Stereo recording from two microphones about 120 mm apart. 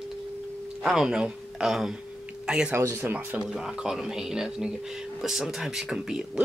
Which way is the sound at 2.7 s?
20° right (ahead or behind).